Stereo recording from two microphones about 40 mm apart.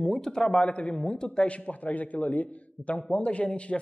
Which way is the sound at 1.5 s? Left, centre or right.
Left.